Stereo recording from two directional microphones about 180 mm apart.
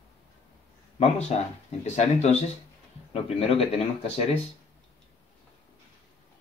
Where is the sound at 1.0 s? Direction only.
35° left (ahead or behind).